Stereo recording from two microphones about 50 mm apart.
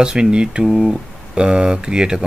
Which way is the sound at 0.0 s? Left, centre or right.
Centre.